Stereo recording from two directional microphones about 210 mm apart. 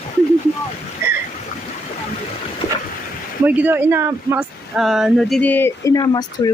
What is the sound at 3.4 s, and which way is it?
Speech, 10° right (ahead or behind).